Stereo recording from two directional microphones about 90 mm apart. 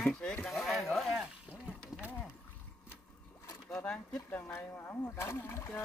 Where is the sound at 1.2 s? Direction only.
10° right (ahead or behind).